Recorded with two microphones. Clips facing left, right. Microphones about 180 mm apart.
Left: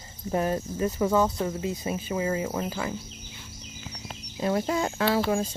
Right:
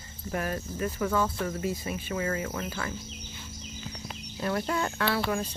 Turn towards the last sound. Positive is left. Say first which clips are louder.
# left 4 dB
turn(degrees=30)  # may be behind; listen again after turning